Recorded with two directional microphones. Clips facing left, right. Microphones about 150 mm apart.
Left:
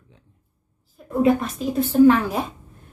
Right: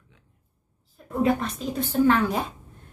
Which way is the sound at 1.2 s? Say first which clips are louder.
Left 4 dB; centre (ahead or behind).